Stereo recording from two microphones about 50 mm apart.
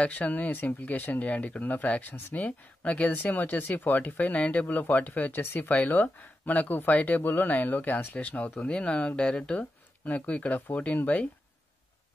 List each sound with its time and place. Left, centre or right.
0.0 s speech: left